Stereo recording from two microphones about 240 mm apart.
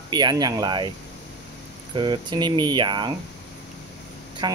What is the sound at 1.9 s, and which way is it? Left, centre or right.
Speech, centre.